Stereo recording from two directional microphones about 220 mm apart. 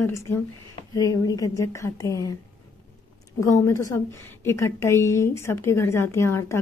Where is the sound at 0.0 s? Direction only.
10° left (ahead or behind).